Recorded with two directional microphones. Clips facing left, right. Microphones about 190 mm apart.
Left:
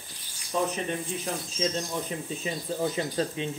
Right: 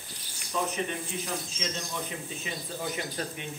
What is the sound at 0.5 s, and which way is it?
Speech, 30° left (ahead or behind).